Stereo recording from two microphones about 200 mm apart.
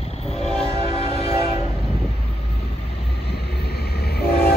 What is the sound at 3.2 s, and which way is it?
Train, 55° left (ahead or behind).